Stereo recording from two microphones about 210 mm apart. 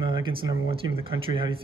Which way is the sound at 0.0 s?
25° right (ahead or behind).